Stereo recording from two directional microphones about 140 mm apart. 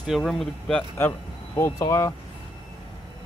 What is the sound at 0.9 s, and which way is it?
Speech, 20° left (ahead or behind).